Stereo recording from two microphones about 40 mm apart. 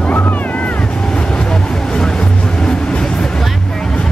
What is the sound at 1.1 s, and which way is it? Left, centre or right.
Vehicle, centre.